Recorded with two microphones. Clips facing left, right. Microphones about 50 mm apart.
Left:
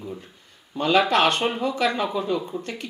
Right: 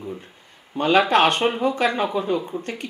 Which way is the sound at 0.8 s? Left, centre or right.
Right.